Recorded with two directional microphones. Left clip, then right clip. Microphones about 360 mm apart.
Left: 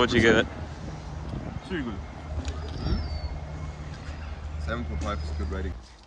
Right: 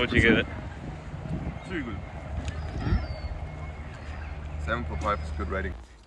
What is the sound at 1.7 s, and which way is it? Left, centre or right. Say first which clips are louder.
Speech: left 1 dB; left.